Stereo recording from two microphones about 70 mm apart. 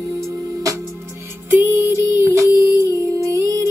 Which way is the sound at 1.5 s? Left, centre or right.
Right.